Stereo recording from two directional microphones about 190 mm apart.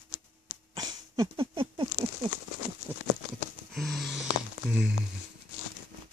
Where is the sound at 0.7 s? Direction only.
20° right (ahead or behind).